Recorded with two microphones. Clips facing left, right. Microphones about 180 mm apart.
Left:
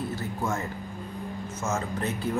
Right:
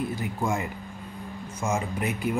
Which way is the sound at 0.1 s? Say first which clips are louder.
Right 2 dB; 15° right (ahead or behind).